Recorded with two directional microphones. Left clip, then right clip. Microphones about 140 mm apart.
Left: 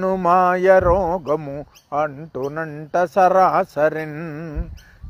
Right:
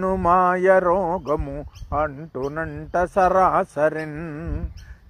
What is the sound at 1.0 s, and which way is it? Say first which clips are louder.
Speech: left 2 dB; 20° left (ahead or behind).